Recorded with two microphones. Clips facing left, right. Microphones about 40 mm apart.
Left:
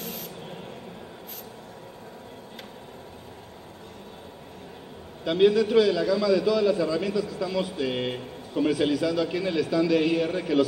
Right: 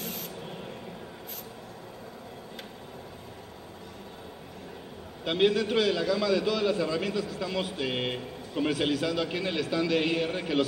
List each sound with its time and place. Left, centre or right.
0.0 s spray: centre
5.2 s a man's voice: right
7.9 s speech: right
8.6 s a man's voice: right